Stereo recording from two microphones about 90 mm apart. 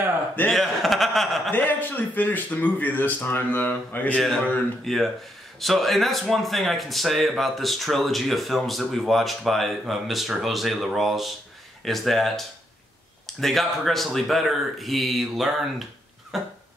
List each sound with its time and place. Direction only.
0.5 s chuckle: centre (ahead or behind)
1.5 s a man's voice: 20° left (ahead or behind)
4.8 s speech: centre (ahead or behind)
16.3 s a sound: 5° right (ahead or behind)